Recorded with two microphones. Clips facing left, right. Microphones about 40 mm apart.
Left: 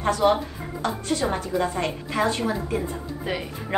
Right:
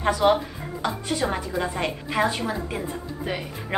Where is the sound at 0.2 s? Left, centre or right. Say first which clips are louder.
Right 1 dB; right.